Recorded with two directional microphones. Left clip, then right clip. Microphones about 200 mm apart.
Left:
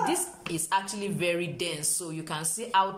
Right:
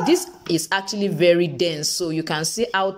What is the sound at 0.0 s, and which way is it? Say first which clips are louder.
A woman's voice: right 9 dB; 35° right (ahead or behind).